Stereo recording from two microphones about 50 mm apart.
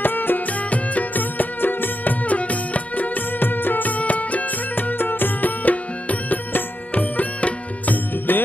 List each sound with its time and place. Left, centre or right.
0.0 s music: left